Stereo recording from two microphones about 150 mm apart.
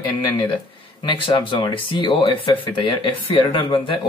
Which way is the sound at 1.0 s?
30° left (ahead or behind).